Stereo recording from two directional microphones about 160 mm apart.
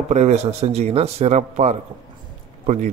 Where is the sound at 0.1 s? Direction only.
45° right (ahead or behind).